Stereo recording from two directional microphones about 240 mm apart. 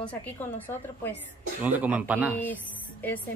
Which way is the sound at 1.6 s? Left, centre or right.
Centre.